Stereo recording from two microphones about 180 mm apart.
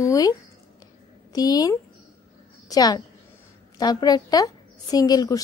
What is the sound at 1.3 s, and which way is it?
A woman's voice, 20° left (ahead or behind).